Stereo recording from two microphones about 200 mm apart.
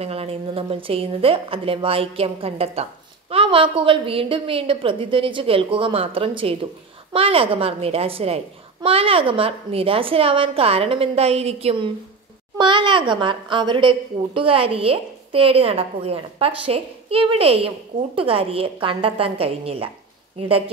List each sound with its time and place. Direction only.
0.0 s a woman's voice: 30° right (ahead or behind)